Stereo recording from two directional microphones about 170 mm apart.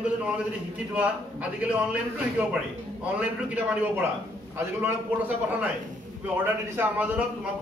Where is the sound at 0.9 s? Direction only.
5° right (ahead or behind).